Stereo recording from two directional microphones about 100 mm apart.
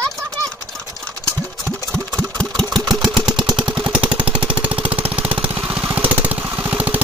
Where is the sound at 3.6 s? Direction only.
10° right (ahead or behind).